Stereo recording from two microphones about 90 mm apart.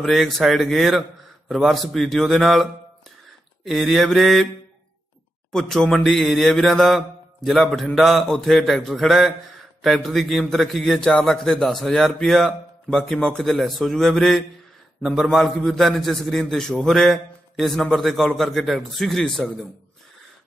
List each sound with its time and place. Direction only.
0.0 s a man's voice: centre (ahead or behind)
5.5 s a man's voice: 5° left (ahead or behind)